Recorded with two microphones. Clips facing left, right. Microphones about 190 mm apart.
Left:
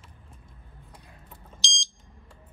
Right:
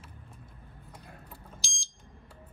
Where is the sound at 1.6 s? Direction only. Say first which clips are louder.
Left 8 dB; centre (ahead or behind).